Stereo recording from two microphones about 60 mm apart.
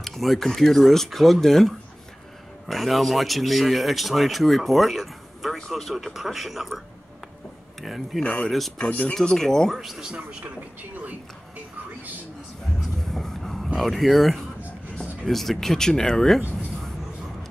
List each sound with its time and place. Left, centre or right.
0.0 s speech: centre
2.7 s speech: centre
7.8 s speech: centre
8.2 s speech: left
8.5 s speech: centre
8.7 s speech: centre
9.1 s speech: centre
9.8 s speech: centre
10.1 s speech: right
13.0 s a sound: centre
13.7 s speech: centre